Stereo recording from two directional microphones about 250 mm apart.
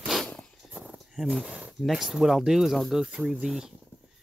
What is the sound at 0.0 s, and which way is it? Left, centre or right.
Speech, centre.